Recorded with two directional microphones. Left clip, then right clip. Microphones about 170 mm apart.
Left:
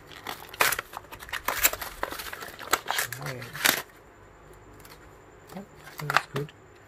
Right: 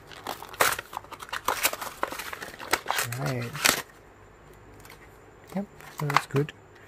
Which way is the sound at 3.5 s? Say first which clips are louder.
Even; 25° right (ahead or behind).